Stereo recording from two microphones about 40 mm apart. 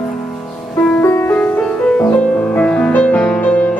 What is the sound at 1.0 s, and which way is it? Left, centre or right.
Music, left.